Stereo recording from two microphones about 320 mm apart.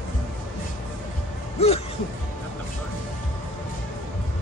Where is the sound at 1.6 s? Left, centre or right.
Centre.